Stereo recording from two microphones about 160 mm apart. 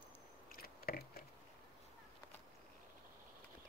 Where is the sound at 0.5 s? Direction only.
70° left (ahead or behind).